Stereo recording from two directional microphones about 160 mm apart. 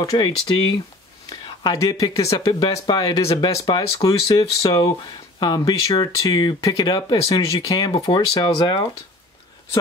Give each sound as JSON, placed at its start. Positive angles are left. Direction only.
{"t": 0.0, "sound": "speech", "side_deg": 20}
{"t": 1.3, "sound": "speech", "side_deg": 25}
{"t": 3.2, "sound": "speech", "side_deg": 40}
{"t": 3.4, "sound": "speech", "side_deg": 25}